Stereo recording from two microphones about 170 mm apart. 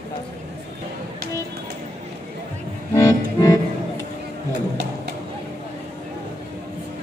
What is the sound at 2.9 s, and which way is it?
Accordion, 20° left (ahead or behind).